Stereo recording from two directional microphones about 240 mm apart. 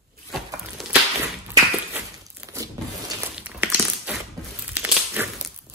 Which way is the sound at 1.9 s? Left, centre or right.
Centre.